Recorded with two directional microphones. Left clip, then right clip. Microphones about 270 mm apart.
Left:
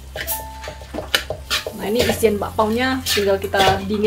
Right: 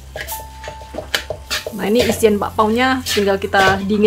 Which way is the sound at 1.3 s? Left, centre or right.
Centre.